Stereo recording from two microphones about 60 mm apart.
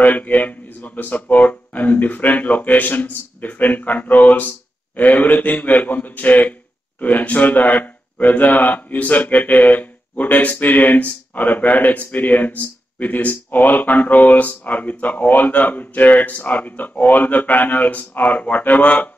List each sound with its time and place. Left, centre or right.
0.0 s speech: left